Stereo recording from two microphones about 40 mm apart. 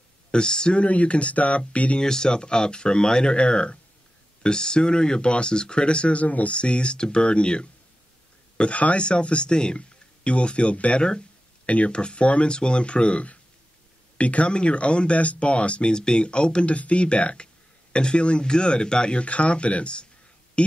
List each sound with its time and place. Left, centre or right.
0.3 s speech: centre
0.7 s speech: left
2.0 s speech: centre
8.5 s speech: left